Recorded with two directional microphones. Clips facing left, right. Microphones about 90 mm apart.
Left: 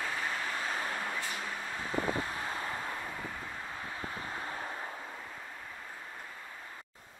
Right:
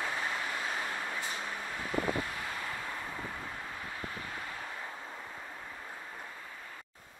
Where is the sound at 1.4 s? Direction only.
15° right (ahead or behind).